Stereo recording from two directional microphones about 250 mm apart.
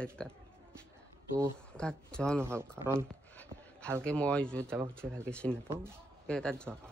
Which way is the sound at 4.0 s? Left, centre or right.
Centre.